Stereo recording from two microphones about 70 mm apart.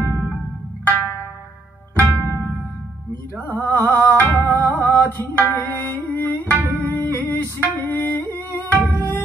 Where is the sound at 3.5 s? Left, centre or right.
Left.